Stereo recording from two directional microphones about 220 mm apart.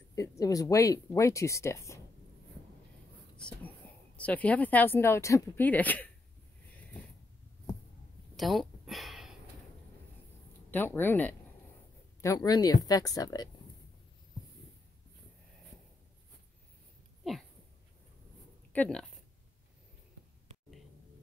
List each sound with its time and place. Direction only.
0.1 s speech: 15° left (ahead or behind)
3.3 s speech: 5° left (ahead or behind)
8.4 s a sound: centre (ahead or behind)
10.7 s speech: 10° left (ahead or behind)
18.7 s speech: 5° left (ahead or behind)